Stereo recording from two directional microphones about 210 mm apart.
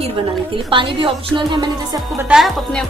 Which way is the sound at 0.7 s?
25° right (ahead or behind).